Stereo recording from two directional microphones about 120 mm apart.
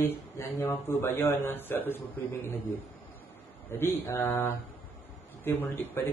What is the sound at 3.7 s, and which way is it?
A man's voice, 20° left (ahead or behind).